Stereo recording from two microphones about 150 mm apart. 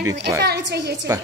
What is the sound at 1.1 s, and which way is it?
Speech, 20° right (ahead or behind).